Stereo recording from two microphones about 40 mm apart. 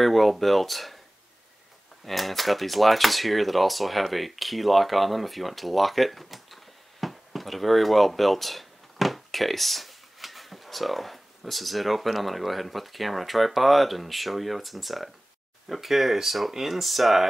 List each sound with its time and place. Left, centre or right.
0.0 s speech: centre
2.0 s speech: centre